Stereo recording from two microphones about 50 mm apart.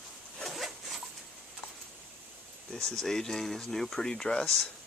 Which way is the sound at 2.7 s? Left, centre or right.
Centre.